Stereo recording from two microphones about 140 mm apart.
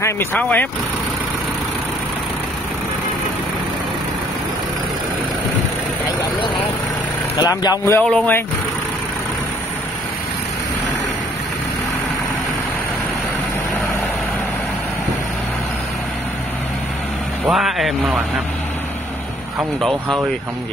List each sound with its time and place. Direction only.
0.0 s speech: 15° left (ahead or behind)
7.3 s speech: 30° left (ahead or behind); by 8.5 s 15° left (ahead or behind)
17.5 s speech: centre (ahead or behind)
19.8 s speech: centre (ahead or behind)